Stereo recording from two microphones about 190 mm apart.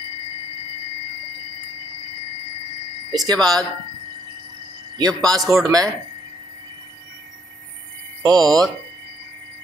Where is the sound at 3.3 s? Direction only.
20° right (ahead or behind).